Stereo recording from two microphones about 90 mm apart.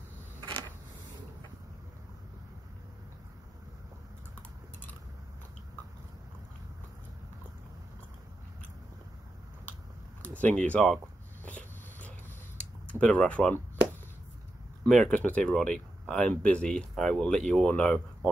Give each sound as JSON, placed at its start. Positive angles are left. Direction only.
{"t": 0.4, "sound": "a sound", "side_deg": -60}
{"t": 10.2, "sound": "speech", "side_deg": 15}
{"t": 11.4, "sound": "dog", "side_deg": 15}
{"t": 12.8, "sound": "speech", "side_deg": 15}
{"t": 14.9, "sound": "speech", "side_deg": 10}